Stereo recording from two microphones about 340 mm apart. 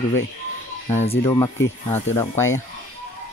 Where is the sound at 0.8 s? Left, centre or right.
Centre.